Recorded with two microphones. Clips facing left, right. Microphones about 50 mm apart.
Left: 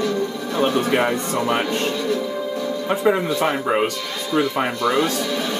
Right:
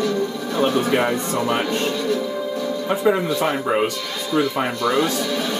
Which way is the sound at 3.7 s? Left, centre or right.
Left.